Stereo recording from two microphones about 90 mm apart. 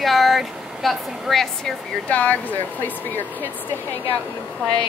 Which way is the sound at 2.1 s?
15° left (ahead or behind).